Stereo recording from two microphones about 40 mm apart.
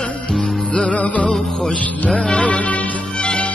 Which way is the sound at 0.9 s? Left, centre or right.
Left.